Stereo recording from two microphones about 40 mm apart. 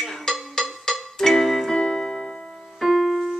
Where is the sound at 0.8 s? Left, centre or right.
Centre.